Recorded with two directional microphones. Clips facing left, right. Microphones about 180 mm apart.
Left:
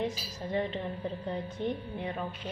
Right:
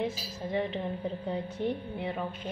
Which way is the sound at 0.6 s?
10° right (ahead or behind).